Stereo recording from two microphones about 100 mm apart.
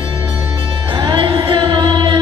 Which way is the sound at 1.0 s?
55° right (ahead or behind).